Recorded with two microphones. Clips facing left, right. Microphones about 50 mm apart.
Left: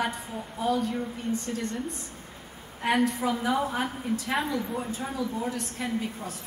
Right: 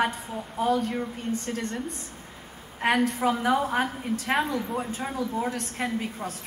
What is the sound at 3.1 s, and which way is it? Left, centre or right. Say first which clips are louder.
A woman's voice: right 3 dB; right.